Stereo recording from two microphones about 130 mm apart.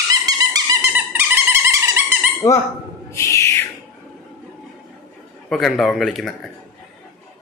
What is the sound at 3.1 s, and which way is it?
Owl, 25° left (ahead or behind).